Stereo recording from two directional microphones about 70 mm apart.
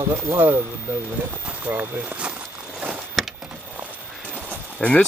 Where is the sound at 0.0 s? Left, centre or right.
Right.